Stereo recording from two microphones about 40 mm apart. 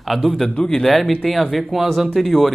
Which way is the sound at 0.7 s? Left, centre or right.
Centre.